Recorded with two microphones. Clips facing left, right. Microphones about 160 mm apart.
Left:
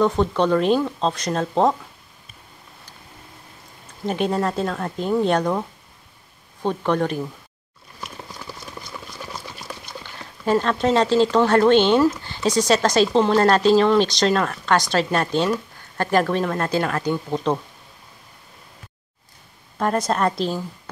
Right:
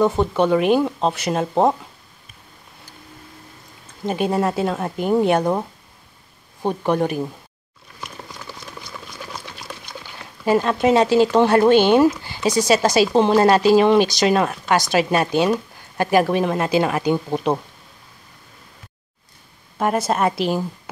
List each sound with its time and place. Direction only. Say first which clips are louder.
0.0 s speech: right 1 dB; 10° right (ahead or behind)
4.0 s speech: right 2 dB; 5° right (ahead or behind)
9.3 s liquid: even; centre (ahead or behind)
10.4 s speech: right 2 dB; 10° right (ahead or behind)
19.8 s speech: right 1 dB; 5° right (ahead or behind)